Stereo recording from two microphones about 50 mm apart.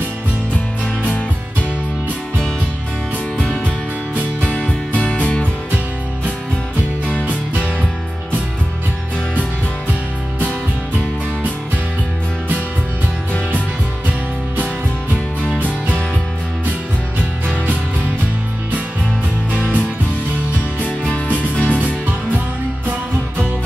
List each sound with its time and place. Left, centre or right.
4.4 s music: left
19.5 s music: right
20.8 s music: left